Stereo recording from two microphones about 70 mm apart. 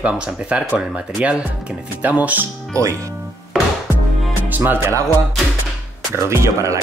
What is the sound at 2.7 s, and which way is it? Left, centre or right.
Speech, right.